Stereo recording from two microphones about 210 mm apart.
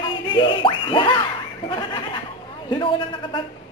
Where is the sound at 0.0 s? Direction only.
25° left (ahead or behind).